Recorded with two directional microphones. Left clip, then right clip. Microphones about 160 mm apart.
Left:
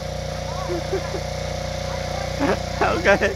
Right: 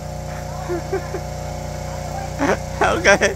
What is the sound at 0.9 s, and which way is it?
Speech, 10° right (ahead or behind).